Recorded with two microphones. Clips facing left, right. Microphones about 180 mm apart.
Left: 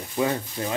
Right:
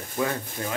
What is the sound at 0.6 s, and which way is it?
Rub, 20° left (ahead or behind).